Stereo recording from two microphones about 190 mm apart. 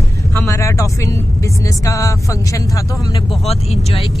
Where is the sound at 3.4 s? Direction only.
35° left (ahead or behind).